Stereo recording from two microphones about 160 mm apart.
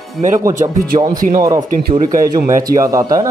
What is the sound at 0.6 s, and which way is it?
Speech, 40° right (ahead or behind).